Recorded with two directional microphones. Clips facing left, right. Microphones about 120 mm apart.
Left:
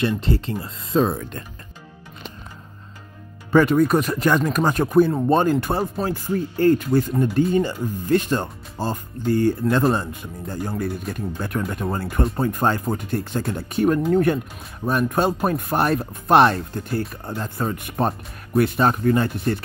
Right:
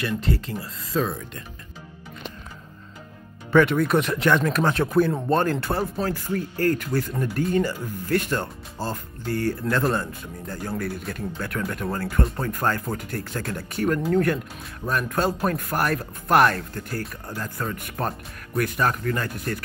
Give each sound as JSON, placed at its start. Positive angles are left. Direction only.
{"t": 0.0, "sound": "speech", "side_deg": 25}
{"t": 3.5, "sound": "speech", "side_deg": 15}
{"t": 11.1, "sound": "speech", "side_deg": 20}